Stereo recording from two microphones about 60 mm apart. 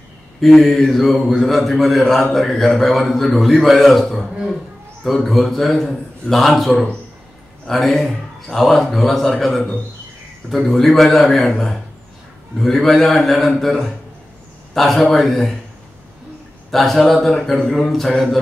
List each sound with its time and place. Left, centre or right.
0.4 s a man's voice: centre
16.7 s a man's voice: centre